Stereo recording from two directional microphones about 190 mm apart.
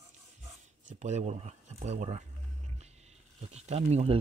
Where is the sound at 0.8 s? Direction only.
40° right (ahead or behind).